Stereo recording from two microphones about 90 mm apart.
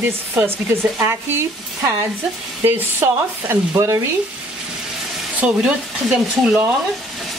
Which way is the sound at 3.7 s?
40° right (ahead or behind).